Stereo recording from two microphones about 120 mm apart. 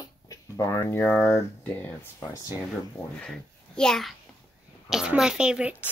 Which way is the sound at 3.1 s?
5° left (ahead or behind).